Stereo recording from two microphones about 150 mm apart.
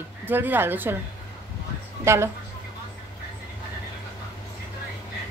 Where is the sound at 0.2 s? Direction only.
15° right (ahead or behind).